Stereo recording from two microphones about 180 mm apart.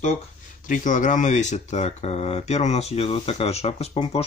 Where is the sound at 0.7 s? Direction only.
45° left (ahead or behind).